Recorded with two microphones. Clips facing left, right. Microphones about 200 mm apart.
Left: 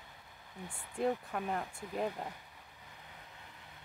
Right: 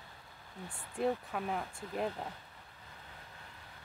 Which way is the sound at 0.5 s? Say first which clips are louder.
Even; 15° left (ahead or behind).